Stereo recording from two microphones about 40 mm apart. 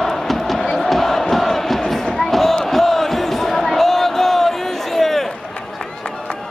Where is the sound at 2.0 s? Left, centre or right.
Centre.